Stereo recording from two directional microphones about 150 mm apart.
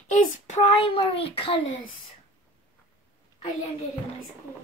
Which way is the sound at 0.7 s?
40° left (ahead or behind).